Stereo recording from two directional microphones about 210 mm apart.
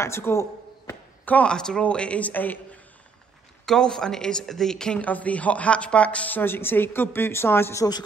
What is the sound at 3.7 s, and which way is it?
Speech, 5° left (ahead or behind).